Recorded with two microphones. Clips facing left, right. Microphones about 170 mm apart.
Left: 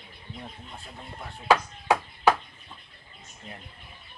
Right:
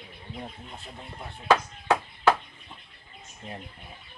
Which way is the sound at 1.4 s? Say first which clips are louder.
Even; 10° left (ahead or behind).